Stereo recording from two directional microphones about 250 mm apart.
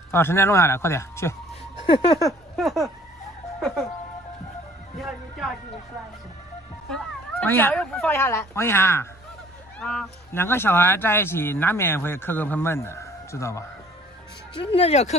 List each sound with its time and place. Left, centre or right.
0.1 s speech: centre
2.5 s a sound: centre
3.5 s speech: centre
4.9 s speech: centre
6.9 s speech: centre; by 15.1 s left